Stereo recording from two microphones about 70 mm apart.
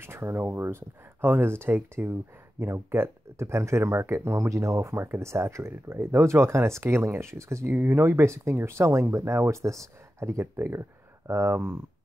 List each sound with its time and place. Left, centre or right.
0.0 s speech: right
7.7 s speech: right